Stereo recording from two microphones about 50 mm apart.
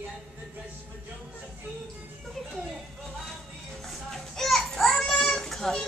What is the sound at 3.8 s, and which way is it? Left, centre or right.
Children playing, centre.